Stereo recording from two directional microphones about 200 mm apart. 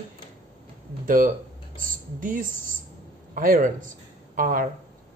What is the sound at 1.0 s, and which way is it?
Speech, 45° right (ahead or behind).